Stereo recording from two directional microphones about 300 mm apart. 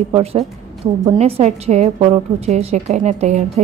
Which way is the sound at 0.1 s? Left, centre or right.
Centre.